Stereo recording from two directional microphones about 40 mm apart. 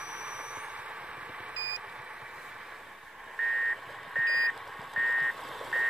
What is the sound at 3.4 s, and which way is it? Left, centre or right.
Reversing beeps, centre.